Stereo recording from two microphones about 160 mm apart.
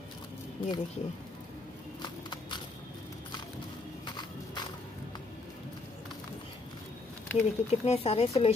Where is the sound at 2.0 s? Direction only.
25° left (ahead or behind).